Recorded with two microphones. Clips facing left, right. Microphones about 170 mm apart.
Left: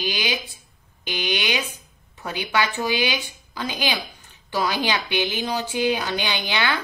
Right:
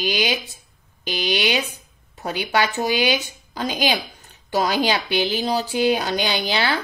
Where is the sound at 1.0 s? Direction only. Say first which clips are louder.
Right 3 dB; 35° right (ahead or behind).